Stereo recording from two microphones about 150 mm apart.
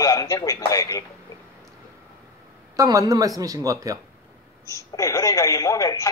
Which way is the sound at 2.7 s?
25° right (ahead or behind).